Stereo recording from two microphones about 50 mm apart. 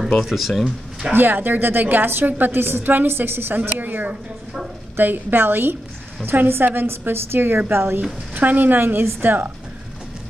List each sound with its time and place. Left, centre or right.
0.2 s speech: centre
1.1 s a woman's voice: right
8.4 s a woman's voice: right